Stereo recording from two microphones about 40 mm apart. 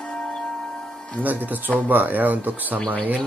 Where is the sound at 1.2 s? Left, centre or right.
Right.